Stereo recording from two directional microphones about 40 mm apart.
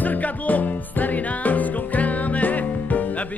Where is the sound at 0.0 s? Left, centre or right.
Left.